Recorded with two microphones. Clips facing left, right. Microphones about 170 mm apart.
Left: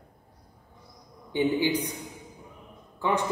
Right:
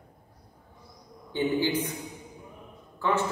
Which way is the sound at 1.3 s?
15° left (ahead or behind).